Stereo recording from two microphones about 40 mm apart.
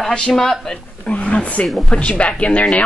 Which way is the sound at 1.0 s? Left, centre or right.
Left.